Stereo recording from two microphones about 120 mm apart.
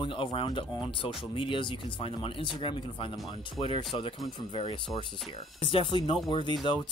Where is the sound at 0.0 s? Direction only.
45° left (ahead or behind).